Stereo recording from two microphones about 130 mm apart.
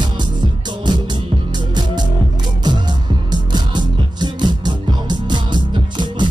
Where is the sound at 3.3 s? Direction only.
35° right (ahead or behind).